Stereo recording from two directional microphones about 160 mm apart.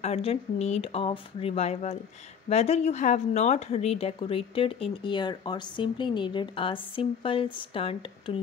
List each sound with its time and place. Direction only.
0.0 s speech: 40° left (ahead or behind)